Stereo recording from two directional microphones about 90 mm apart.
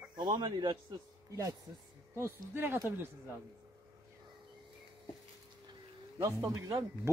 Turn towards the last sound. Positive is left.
turn(degrees=-30)  # may be behind; listen again after turning